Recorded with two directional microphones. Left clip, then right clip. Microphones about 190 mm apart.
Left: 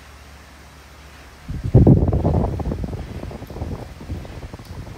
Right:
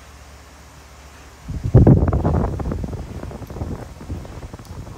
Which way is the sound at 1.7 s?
30° left (ahead or behind).